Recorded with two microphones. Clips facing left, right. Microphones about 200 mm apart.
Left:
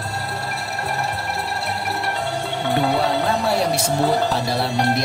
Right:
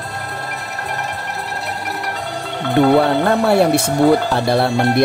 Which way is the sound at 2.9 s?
60° right (ahead or behind).